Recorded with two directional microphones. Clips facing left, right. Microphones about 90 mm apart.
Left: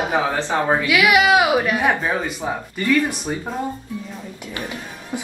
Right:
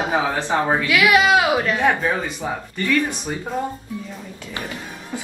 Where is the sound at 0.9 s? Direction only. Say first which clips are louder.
Even; 15° left (ahead or behind).